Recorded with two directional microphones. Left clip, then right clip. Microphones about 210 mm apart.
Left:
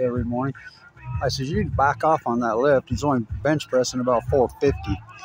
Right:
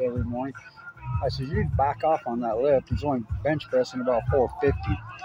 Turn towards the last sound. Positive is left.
turn(degrees=40)  # may be behind; listen again after turning